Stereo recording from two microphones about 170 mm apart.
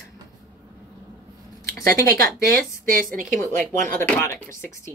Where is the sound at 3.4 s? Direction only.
50° right (ahead or behind).